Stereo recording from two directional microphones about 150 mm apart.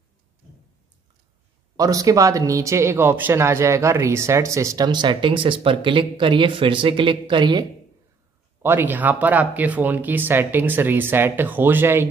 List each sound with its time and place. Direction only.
1.8 s speech: 25° right (ahead or behind)
8.6 s speech: 15° right (ahead or behind)